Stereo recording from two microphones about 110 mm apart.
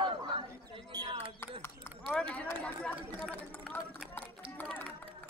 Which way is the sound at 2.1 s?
10° left (ahead or behind).